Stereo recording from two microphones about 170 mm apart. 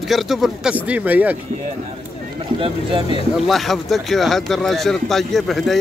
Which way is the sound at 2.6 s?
30° right (ahead or behind).